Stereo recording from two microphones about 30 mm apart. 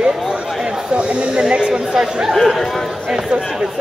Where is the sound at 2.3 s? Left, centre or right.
Centre.